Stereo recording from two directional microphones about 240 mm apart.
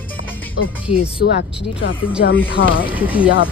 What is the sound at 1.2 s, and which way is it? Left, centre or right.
Speech, left.